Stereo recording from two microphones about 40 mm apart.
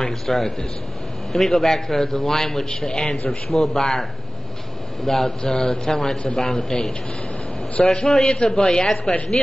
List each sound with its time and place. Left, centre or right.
0.0 s a man's voice: centre
3.3 s a man's voice: centre
5.0 s a man's voice: centre
8.0 s a man's voice: centre